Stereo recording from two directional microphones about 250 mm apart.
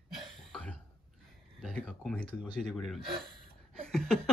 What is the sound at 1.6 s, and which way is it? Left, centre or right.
Speech, centre.